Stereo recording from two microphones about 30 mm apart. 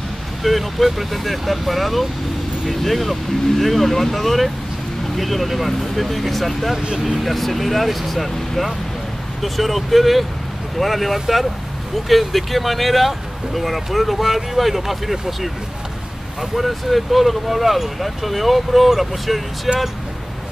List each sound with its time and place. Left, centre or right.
0.4 s speech: centre
6.8 s speech: right
7.2 s speech: centre